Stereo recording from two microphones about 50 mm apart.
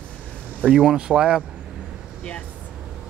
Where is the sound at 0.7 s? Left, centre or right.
Centre.